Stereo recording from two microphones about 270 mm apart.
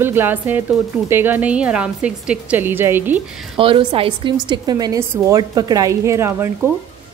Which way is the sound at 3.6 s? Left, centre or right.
Centre.